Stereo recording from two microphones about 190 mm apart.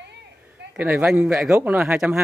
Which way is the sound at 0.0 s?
65° right (ahead or behind).